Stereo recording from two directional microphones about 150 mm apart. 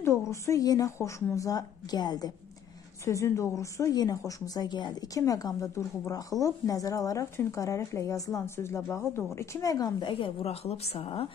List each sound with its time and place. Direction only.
0.0 s a woman's voice: 20° left (ahead or behind); by 11.2 s 40° left (ahead or behind)